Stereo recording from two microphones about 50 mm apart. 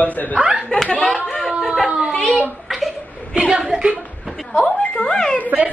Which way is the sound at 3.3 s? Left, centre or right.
Right.